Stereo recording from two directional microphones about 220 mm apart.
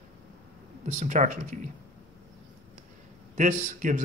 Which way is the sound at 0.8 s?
35° right (ahead or behind).